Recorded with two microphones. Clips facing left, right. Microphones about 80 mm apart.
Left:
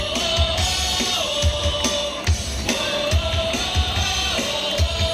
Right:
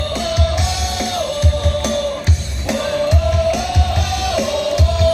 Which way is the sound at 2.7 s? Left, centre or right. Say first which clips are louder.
Right 6 dB; right.